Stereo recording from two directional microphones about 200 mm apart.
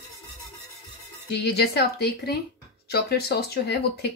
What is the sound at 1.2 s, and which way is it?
Speech, 55° left (ahead or behind).